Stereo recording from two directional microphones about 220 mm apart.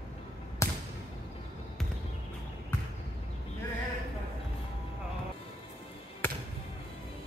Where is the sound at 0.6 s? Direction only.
15° left (ahead or behind).